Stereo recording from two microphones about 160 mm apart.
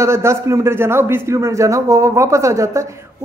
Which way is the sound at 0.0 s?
15° right (ahead or behind).